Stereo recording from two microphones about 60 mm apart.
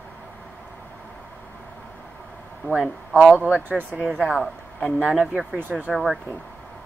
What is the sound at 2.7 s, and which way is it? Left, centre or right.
A man's voice, centre.